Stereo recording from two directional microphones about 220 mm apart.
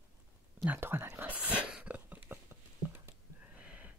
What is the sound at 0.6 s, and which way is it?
Whispering, 10° right (ahead or behind).